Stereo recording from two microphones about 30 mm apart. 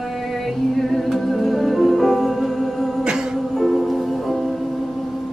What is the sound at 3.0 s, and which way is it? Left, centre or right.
Music, right.